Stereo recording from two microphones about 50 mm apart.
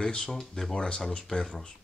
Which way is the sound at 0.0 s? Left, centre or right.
Centre.